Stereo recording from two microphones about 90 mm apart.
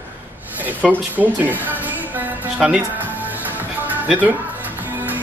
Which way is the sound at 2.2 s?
10° right (ahead or behind).